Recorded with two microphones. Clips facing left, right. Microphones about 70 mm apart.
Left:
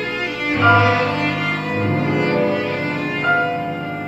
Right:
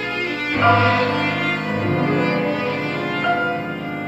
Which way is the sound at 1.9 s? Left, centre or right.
Right.